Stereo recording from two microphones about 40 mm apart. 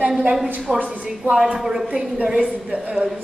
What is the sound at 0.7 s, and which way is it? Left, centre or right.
Speech, right.